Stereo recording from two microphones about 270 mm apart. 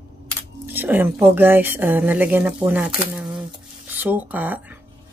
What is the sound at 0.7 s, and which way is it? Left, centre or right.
A woman's voice, centre.